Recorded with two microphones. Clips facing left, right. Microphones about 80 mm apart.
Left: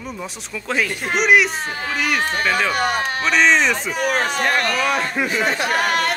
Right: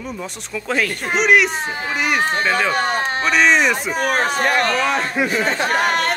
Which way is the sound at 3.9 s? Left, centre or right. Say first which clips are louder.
Right 1 dB; right.